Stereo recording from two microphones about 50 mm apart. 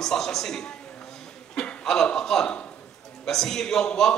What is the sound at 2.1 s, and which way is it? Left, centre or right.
A man's voice, centre.